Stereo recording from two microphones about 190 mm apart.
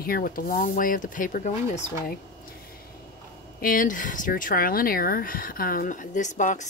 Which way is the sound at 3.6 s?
45° left (ahead or behind).